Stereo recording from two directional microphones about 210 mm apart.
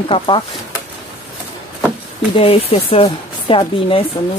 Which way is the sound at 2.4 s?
25° left (ahead or behind).